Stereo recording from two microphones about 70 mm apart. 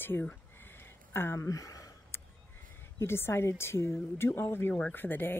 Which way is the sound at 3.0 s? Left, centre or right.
Left.